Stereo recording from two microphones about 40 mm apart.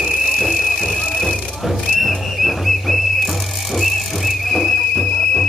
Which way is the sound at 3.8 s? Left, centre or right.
Centre.